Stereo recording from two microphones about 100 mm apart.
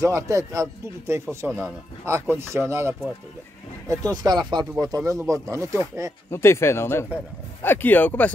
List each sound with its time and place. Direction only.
0.0 s speech: 35° right (ahead or behind)
3.9 s speech: 40° right (ahead or behind)
6.3 s speech: 25° left (ahead or behind)